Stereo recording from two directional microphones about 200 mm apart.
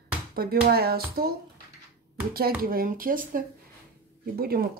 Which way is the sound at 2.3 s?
50° right (ahead or behind).